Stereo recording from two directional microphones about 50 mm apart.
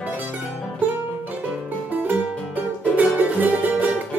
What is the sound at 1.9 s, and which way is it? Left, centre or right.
Music, right.